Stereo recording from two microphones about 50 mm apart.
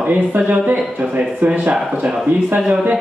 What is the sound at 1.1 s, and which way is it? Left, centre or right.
Speech, right.